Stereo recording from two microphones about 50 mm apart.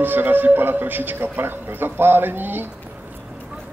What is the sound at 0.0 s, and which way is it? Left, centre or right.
Speech, right.